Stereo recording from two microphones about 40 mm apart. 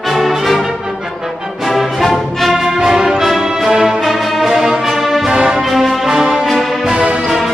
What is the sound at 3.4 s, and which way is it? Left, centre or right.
Music, centre.